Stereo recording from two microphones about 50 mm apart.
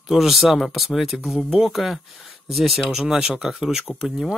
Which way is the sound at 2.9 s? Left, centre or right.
Centre.